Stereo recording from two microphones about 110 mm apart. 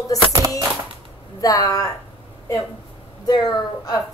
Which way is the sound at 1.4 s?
30° left (ahead or behind).